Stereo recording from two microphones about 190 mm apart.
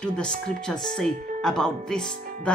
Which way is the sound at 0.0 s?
5° left (ahead or behind).